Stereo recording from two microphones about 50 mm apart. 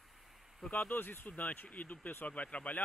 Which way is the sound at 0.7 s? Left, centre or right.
Left.